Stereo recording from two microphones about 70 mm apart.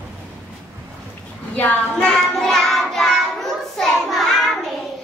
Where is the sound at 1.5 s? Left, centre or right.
Left.